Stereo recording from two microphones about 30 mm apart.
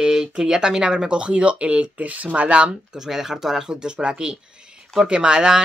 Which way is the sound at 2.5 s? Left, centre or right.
Right.